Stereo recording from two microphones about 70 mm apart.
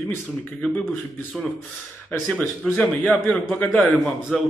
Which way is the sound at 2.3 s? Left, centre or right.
Centre.